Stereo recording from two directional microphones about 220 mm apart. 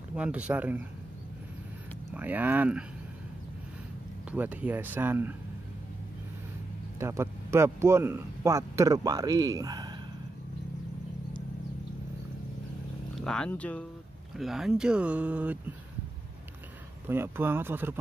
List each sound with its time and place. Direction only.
0.1 s speech: 5° right (ahead or behind)
2.1 s speech: 10° right (ahead or behind)
4.3 s speech: 5° right (ahead or behind)
7.0 s speech: 10° right (ahead or behind)
13.2 s speech: 5° left (ahead or behind)
17.1 s speech: 10° right (ahead or behind)